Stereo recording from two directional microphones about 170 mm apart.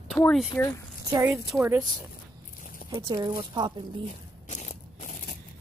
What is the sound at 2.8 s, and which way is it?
Speech, 20° right (ahead or behind).